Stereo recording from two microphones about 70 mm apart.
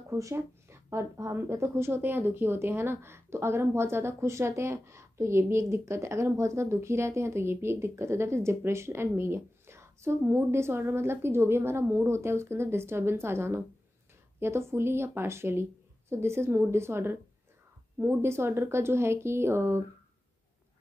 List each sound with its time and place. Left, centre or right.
0.1 s a woman's voice: right